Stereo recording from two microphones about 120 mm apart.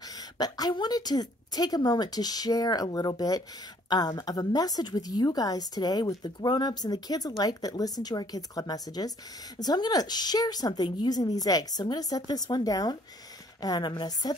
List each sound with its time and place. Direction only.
0.1 s a woman's voice: 35° left (ahead or behind)